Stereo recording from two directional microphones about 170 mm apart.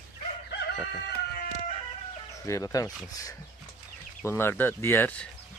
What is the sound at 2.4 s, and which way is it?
Speech, 20° left (ahead or behind).